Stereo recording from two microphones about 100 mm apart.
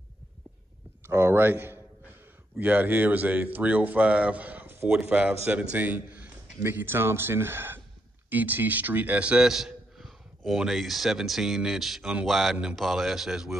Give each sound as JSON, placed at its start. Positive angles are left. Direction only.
{"t": 1.0, "sound": "a man's voice", "side_deg": -25}